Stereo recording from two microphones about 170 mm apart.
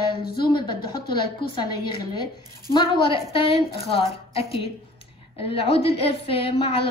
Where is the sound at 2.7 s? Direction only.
30° left (ahead or behind).